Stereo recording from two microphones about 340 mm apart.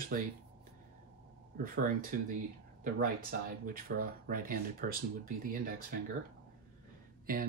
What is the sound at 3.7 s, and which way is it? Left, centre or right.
Speech, right.